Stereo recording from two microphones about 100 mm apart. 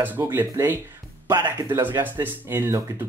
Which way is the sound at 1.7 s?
25° right (ahead or behind).